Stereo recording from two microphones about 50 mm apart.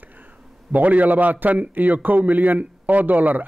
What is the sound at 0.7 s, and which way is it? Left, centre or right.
Speech, right.